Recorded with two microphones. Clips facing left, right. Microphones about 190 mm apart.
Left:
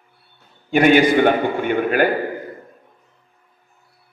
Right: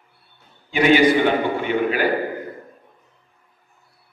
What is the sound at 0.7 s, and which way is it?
A man's voice, 50° left (ahead or behind).